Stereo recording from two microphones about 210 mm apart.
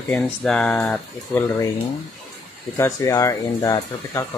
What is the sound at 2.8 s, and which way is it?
Speech, 15° left (ahead or behind).